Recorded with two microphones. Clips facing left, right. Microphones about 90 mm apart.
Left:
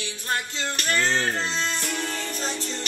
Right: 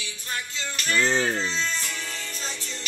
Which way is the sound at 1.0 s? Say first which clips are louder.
Right 2 dB; 15° right (ahead or behind).